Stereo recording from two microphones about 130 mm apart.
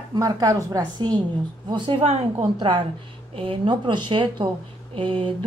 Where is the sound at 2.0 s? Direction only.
50° right (ahead or behind).